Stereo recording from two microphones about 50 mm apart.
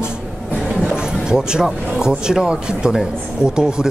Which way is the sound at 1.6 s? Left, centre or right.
Centre.